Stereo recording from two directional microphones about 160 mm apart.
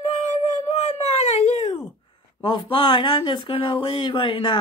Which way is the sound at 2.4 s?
30° left (ahead or behind).